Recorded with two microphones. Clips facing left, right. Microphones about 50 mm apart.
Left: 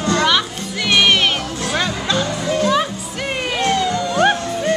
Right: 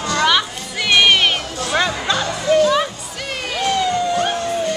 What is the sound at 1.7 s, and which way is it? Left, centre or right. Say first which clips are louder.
Music: right 3 dB; centre.